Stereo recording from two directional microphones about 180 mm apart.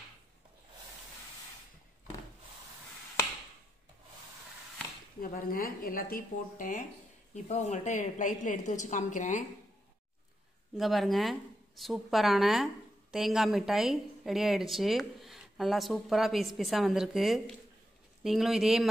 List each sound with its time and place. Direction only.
5.2 s a woman's voice: 50° left (ahead or behind)
7.4 s a woman's voice: 35° left (ahead or behind)
10.8 s a woman's voice: centre (ahead or behind)